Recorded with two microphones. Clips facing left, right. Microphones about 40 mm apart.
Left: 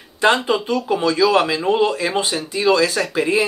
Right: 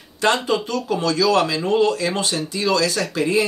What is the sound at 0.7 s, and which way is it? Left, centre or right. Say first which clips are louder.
Speech: left 3 dB; centre.